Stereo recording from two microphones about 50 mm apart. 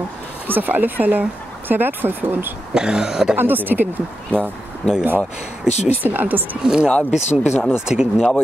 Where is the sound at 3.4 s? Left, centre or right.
Right.